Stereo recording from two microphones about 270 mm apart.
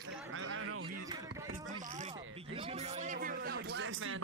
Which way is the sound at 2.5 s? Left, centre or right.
Right.